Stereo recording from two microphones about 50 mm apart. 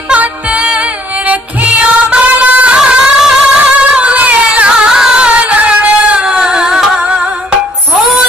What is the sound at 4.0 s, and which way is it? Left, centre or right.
Music, right.